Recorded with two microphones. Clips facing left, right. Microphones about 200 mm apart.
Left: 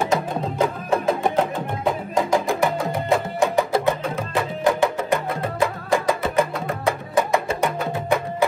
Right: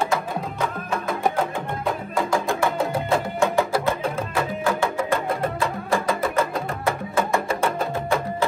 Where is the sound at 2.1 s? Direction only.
20° left (ahead or behind).